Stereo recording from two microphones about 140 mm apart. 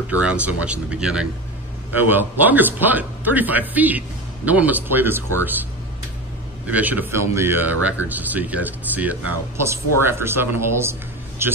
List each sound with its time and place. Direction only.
0.1 s speech: 10° right (ahead or behind)
6.7 s speech: 10° right (ahead or behind)